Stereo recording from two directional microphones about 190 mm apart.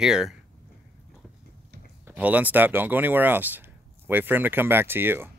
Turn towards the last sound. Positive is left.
turn(degrees=-10)  # may be behind; listen again after turning